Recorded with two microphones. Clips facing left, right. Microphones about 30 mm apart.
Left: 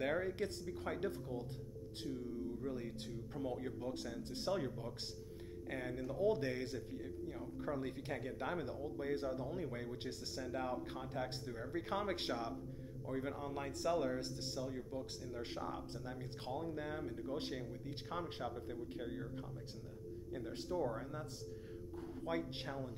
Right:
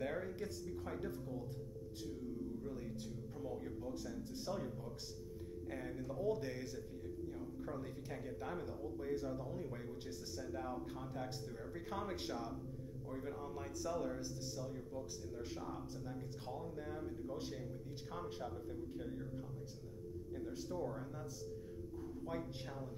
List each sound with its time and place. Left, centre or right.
0.0 s a man's voice: left
2.6 s a man's voice: left
10.0 s a man's voice: left
14.6 s a man's voice: left
20.3 s a man's voice: left